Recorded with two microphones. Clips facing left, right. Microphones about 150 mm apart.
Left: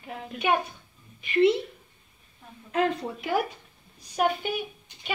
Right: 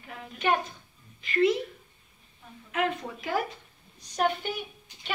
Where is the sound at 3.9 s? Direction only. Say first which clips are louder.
Left 2 dB; 5° left (ahead or behind).